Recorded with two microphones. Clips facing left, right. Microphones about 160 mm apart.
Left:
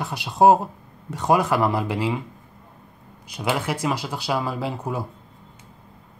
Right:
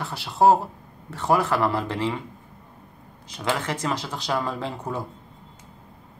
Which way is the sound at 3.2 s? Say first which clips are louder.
Left 2 dB; 10° left (ahead or behind).